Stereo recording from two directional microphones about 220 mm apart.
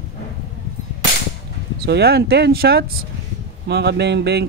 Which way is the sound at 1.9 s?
45° right (ahead or behind).